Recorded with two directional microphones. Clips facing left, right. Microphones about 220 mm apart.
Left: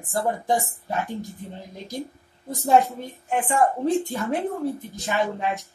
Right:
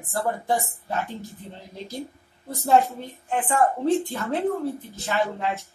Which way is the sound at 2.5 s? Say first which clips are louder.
Left 1 dB; 15° left (ahead or behind).